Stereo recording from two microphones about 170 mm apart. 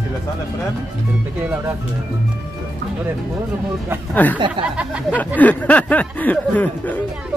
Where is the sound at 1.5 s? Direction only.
15° right (ahead or behind).